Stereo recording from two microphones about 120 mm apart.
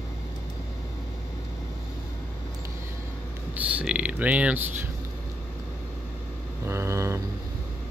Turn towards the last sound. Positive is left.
turn(degrees=-20)  # may be behind; listen again after turning